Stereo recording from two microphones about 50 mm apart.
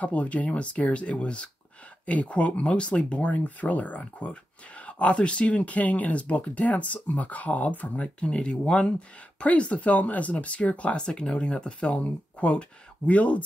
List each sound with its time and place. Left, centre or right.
0.0 s speech: left